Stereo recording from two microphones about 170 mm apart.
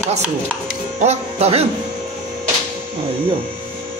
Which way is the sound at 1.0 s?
40° right (ahead or behind).